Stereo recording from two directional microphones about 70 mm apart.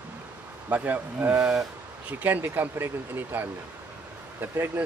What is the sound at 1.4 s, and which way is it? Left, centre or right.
Speech, centre.